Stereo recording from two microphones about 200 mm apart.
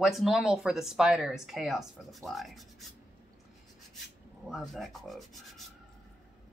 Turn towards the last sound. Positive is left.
turn(degrees=0)  # may be behind; listen again after turning